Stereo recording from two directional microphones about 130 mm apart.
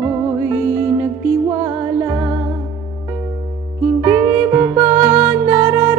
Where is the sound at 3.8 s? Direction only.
25° right (ahead or behind).